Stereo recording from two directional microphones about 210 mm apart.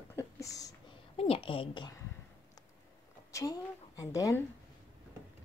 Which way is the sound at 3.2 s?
15° left (ahead or behind).